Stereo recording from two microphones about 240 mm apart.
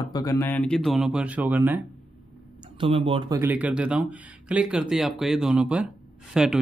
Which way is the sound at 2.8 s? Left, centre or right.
Right.